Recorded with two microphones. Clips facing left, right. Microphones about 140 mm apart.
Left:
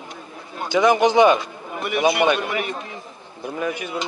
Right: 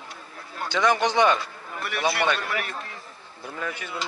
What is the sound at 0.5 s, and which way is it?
A man's voice, 15° left (ahead or behind).